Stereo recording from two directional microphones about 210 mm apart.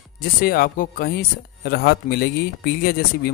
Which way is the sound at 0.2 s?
45° left (ahead or behind).